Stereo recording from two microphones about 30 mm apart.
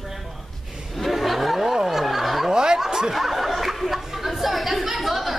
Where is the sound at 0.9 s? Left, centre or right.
Centre.